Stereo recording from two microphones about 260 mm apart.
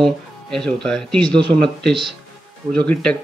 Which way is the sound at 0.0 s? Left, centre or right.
Centre.